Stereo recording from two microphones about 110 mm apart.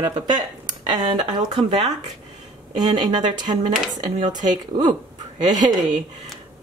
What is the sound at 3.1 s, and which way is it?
Speech, 45° right (ahead or behind).